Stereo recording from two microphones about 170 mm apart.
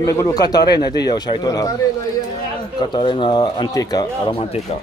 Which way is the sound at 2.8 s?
30° left (ahead or behind).